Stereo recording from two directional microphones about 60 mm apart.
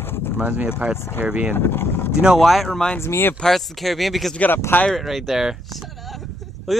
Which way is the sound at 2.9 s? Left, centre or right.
Left.